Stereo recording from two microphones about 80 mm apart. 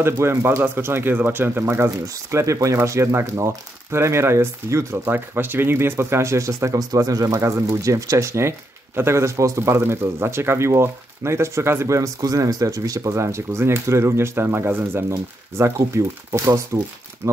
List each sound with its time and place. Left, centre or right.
0.0 s speech: right